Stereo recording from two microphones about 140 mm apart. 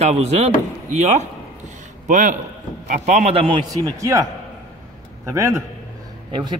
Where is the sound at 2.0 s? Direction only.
65° right (ahead or behind).